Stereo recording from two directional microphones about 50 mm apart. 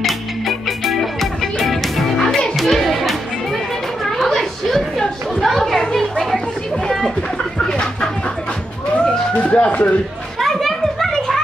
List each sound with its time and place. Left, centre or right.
0.0 s music: centre
4.0 s a sound: centre
5.4 s children playing: centre
5.9 s children playing: centre
7.5 s a sound: centre
8.9 s police car: left
10.4 s children playing: centre